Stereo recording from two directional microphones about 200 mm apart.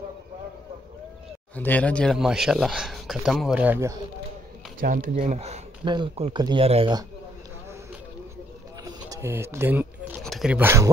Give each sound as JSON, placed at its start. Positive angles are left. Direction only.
{"t": 1.5, "sound": "speech", "side_deg": 10}
{"t": 4.7, "sound": "speech", "side_deg": -45}
{"t": 8.8, "sound": "speech", "side_deg": -15}